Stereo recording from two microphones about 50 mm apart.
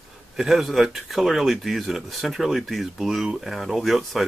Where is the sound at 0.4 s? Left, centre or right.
Centre.